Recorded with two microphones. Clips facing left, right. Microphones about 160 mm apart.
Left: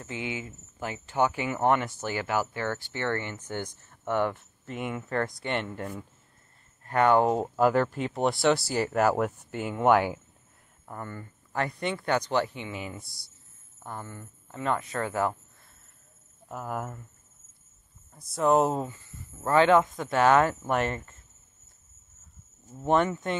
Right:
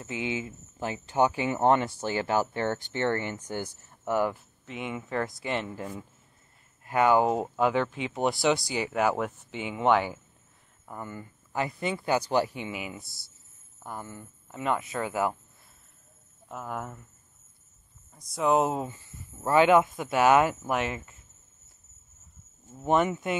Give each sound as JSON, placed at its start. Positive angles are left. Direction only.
{"t": 0.0, "sound": "speech", "side_deg": -20}
{"t": 10.9, "sound": "speech", "side_deg": -10}
{"t": 16.4, "sound": "speech", "side_deg": 5}
{"t": 18.1, "sound": "speech", "side_deg": 0}
{"t": 18.9, "sound": "speech", "side_deg": -15}
{"t": 22.8, "sound": "speech", "side_deg": -5}
{"t": 23.0, "sound": "speech", "side_deg": -15}